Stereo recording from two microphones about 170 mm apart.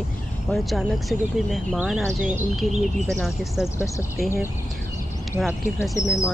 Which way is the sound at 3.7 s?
20° left (ahead or behind).